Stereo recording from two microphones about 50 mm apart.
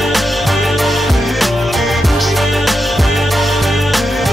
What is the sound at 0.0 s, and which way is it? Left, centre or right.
Music, centre.